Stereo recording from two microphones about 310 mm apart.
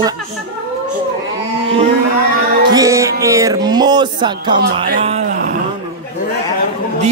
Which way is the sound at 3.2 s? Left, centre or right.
Centre.